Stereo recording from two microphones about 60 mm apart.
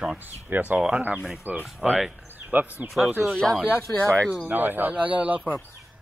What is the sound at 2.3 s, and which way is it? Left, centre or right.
Speech, right.